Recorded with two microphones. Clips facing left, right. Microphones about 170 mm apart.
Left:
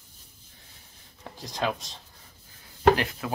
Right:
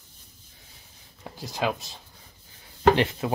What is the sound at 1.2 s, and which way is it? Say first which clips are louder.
Speech: right 2 dB; 5° right (ahead or behind).